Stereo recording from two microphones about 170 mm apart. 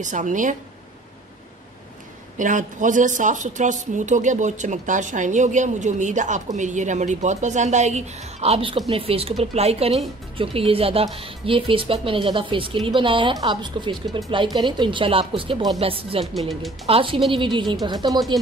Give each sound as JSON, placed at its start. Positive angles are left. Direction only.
{"t": 0.0, "sound": "a woman's voice", "side_deg": -45}
{"t": 2.3, "sound": "a woman's voice", "side_deg": -50}
{"t": 16.3, "sound": "speech", "side_deg": 0}
{"t": 16.8, "sound": "a woman's voice", "side_deg": -30}
{"t": 18.3, "sound": "speech", "side_deg": 0}